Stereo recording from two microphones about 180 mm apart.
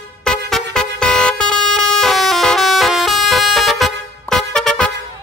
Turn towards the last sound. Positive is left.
turn(degrees=5)  # may be behind; listen again after turning